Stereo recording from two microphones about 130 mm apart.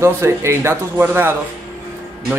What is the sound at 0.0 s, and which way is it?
Speech, 20° right (ahead or behind).